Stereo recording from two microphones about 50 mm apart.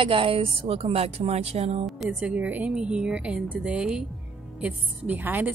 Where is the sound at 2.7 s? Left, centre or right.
Centre.